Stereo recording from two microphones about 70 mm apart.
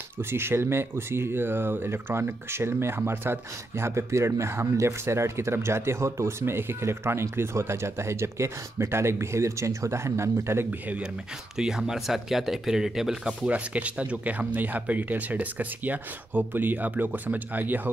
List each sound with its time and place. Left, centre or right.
0.2 s speech: right
11.5 s speech: centre
13.5 s speech: centre